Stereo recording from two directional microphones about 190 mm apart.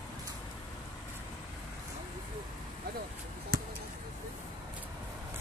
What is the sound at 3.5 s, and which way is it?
Basketball bounce, 55° right (ahead or behind).